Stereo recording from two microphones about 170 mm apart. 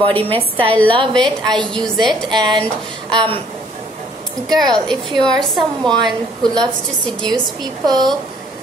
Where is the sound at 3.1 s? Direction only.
30° right (ahead or behind).